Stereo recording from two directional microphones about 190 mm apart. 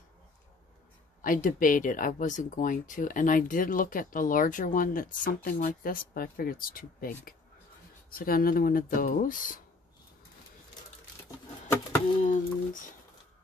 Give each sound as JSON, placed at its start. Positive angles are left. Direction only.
{"t": 1.2, "sound": "speech", "side_deg": 45}
{"t": 12.2, "sound": "speech", "side_deg": 40}